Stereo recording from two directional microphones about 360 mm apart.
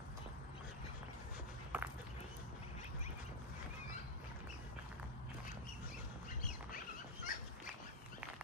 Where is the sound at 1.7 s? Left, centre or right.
Centre.